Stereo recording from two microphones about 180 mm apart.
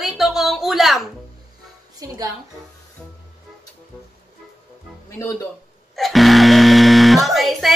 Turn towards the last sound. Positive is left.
turn(degrees=0)  # may be behind; listen again after turning